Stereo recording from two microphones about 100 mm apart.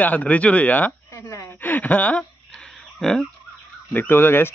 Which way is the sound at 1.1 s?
30° left (ahead or behind).